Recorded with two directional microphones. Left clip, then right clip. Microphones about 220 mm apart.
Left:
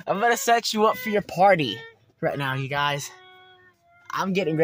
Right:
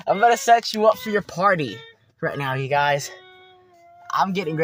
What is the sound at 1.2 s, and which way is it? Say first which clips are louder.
Speech: left 1 dB; 40° right (ahead or behind).